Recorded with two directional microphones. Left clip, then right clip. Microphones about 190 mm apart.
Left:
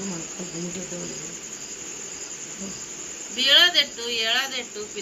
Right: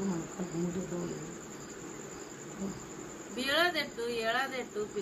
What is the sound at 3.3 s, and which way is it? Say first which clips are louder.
Speech: left 13 dB; 5° right (ahead or behind).